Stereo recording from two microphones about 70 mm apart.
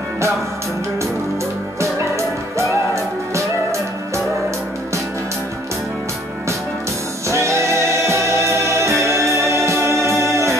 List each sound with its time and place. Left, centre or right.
1.8 s music: right
7.2 s music: right